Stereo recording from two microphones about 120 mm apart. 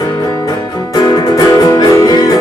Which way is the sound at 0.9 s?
30° left (ahead or behind).